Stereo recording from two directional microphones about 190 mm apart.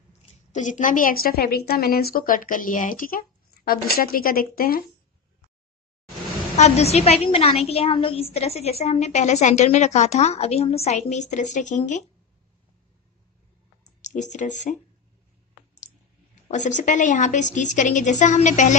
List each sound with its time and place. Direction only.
0.5 s a woman's voice: 40° left (ahead or behind)
6.5 s a woman's voice: 35° left (ahead or behind)
14.0 s a woman's voice: 40° left (ahead or behind)
16.4 s a woman's voice: 40° left (ahead or behind)